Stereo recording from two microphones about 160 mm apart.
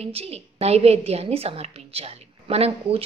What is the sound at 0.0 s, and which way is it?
A woman's voice, 40° right (ahead or behind).